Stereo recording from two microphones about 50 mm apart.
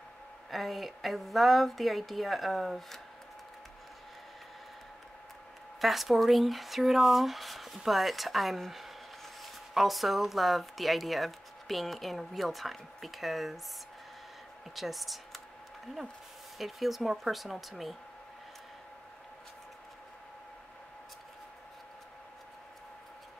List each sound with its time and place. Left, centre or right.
0.5 s speech: centre
5.8 s speech: centre
14.8 s speech: centre
16.5 s speech: centre